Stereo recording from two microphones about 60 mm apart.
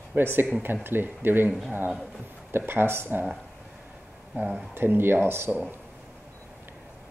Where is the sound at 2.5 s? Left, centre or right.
Right.